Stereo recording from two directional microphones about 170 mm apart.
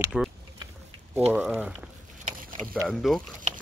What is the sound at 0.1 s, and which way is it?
Speech, 5° right (ahead or behind).